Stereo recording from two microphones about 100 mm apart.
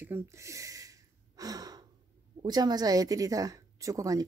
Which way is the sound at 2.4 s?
45° right (ahead or behind).